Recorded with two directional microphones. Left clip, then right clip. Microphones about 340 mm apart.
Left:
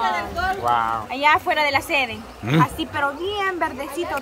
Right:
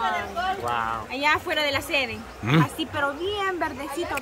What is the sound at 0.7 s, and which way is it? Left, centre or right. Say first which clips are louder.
Speech: left 6 dB; centre.